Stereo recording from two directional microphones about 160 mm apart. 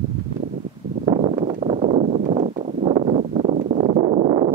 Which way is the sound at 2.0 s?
55° right (ahead or behind).